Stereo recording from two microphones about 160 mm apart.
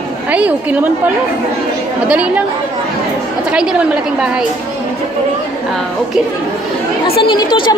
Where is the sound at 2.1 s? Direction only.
10° right (ahead or behind).